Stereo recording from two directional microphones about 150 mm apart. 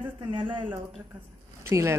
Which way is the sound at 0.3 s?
35° right (ahead or behind).